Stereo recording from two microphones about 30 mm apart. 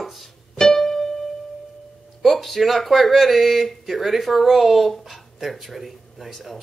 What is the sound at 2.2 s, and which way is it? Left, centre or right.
Speech, centre.